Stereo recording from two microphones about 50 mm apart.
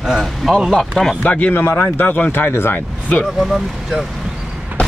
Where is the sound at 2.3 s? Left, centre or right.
Left.